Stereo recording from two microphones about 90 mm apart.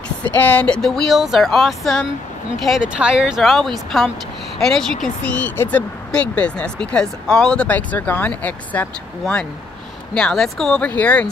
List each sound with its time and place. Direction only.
0.4 s speech: 15° left (ahead or behind)
0.7 s speech: 5° left (ahead or behind)
5.2 s speech: 15° left (ahead or behind)
11.0 s speech: 15° left (ahead or behind)